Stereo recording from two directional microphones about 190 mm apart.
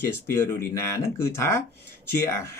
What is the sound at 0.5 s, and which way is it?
Speech, 15° left (ahead or behind).